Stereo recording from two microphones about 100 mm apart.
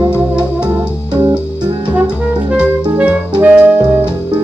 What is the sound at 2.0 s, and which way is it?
Music, 10° right (ahead or behind).